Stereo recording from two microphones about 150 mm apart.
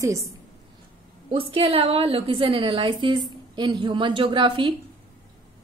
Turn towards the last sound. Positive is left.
turn(degrees=-30)  # may be behind; listen again after turning